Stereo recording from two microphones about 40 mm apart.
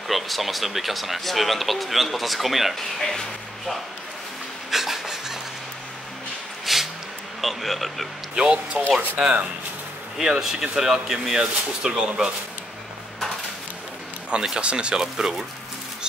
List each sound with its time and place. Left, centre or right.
0.1 s speech: centre
2.7 s speech: centre
4.6 s a sound: centre
6.6 s a sound: centre
7.4 s speech: centre
8.4 s speech: right
10.6 s speech: centre
14.3 s speech: centre
14.6 s speech: right
15.0 s speech: centre